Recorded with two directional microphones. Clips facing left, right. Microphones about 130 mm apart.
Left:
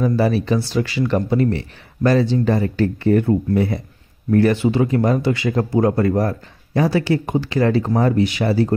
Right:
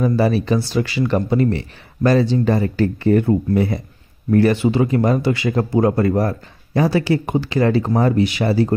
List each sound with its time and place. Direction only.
0.3 s speech: 15° right (ahead or behind)